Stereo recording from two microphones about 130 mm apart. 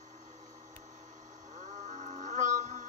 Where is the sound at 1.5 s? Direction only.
70° right (ahead or behind).